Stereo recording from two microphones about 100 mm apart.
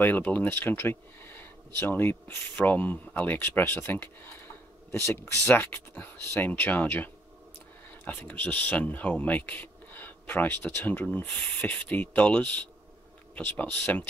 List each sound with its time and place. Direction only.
0.0 s speech: 20° left (ahead or behind)